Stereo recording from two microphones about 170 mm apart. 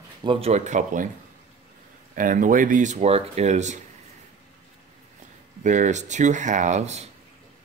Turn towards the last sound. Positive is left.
turn(degrees=-40)  # may be behind; listen again after turning